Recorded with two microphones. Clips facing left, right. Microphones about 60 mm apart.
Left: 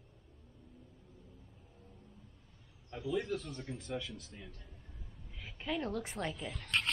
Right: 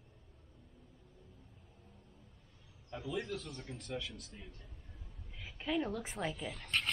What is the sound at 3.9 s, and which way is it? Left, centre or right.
Speech, left.